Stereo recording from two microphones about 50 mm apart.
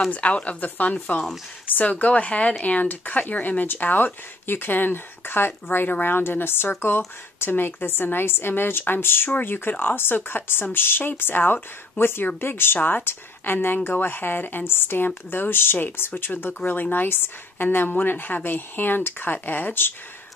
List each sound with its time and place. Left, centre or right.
0.1 s speech: left
17.6 s speech: left